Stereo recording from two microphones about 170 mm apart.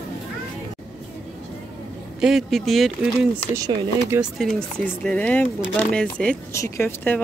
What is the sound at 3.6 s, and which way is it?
Speech, 25° right (ahead or behind).